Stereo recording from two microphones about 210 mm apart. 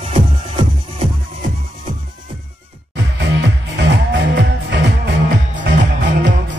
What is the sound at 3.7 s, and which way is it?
Music, 55° right (ahead or behind).